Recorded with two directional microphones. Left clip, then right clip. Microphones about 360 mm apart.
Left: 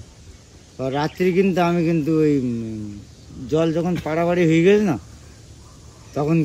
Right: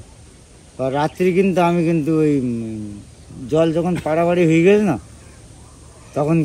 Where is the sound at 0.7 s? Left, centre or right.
Centre.